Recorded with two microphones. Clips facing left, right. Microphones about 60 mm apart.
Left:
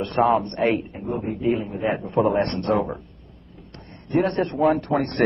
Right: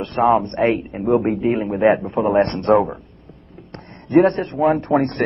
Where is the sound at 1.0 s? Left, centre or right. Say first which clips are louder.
Right 10 dB; right.